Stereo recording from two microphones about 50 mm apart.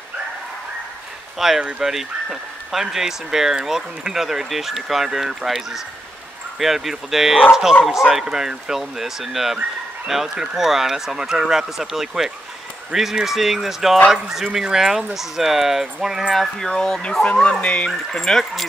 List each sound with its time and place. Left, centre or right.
1.6 s speech: centre
1.9 s speech: centre
16.3 s speech: centre
17.8 s speech: centre
18.4 s speech: centre